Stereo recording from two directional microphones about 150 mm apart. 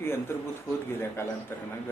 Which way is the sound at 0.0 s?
15° left (ahead or behind).